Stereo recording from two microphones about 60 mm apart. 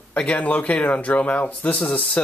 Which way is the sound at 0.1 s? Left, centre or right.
Left.